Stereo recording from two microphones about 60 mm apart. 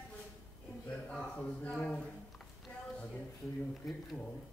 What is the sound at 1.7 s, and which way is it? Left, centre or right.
Speech, centre.